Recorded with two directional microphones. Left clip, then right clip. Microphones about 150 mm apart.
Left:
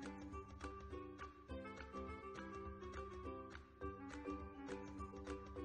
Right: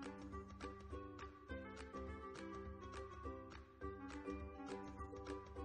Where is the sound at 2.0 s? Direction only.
20° left (ahead or behind).